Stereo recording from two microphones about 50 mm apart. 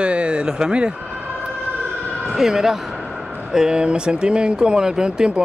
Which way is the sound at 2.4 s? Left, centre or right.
Centre.